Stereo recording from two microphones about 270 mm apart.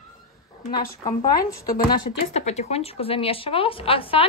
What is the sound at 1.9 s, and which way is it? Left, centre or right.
Speech, left.